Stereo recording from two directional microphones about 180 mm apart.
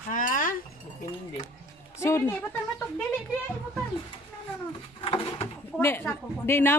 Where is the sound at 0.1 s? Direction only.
45° left (ahead or behind).